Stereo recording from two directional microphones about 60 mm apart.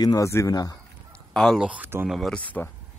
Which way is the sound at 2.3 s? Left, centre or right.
Left.